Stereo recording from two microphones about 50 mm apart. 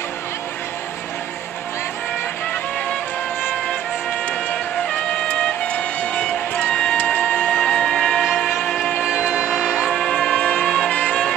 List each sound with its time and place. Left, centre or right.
5.3 s music: left
7.2 s a sound: left
7.6 s music: centre
9.0 s music: centre
9.9 s music: centre